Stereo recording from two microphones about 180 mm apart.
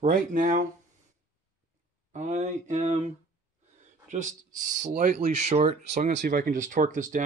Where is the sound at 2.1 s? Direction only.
40° right (ahead or behind).